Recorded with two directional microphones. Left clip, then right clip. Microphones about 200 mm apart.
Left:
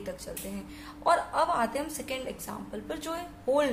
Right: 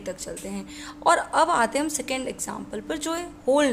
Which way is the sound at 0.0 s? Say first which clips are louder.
Right 5 dB; 35° right (ahead or behind).